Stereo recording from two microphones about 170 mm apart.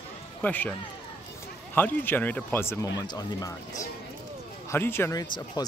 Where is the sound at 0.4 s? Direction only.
10° left (ahead or behind).